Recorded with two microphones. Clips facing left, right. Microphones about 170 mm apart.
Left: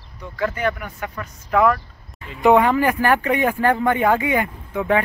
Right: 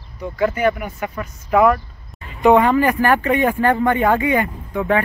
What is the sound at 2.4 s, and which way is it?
Speech, 10° left (ahead or behind).